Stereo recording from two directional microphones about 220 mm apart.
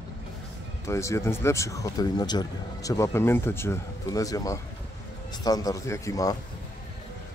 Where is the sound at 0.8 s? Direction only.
15° left (ahead or behind).